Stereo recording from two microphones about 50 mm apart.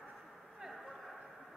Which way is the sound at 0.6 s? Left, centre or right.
Centre.